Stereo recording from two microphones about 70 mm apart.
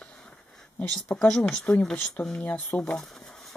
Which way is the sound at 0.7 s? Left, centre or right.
Centre.